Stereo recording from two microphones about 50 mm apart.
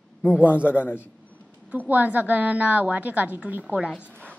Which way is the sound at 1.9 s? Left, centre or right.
Right.